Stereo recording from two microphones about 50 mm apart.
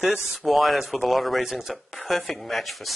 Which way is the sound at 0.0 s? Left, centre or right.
Centre.